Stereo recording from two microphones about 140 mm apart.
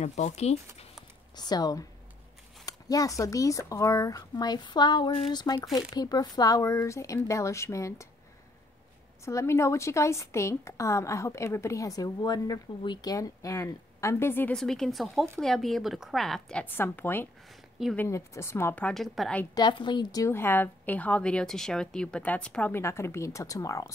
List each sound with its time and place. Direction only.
0.0 s speech: 55° left (ahead or behind)
1.3 s a woman's voice: 30° left (ahead or behind)
9.2 s a woman's voice: 20° left (ahead or behind)
14.5 s a woman's voice: 5° left (ahead or behind)
19.5 s a woman's voice: 30° left (ahead or behind)